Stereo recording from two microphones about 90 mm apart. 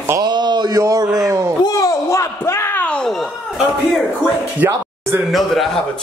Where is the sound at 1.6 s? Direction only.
40° left (ahead or behind).